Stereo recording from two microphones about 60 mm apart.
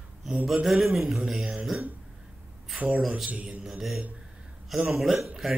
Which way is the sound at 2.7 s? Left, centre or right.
Right.